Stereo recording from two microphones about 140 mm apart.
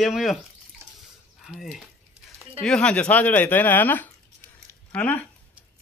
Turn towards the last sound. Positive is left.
turn(degrees=10)  # may be behind; listen again after turning